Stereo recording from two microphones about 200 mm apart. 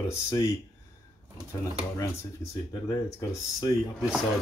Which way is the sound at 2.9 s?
15° left (ahead or behind).